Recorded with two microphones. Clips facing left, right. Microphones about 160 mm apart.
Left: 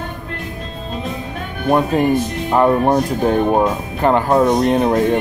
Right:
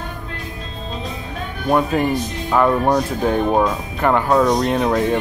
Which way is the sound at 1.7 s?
20° left (ahead or behind).